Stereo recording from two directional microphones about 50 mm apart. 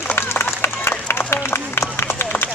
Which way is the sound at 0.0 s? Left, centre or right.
Left.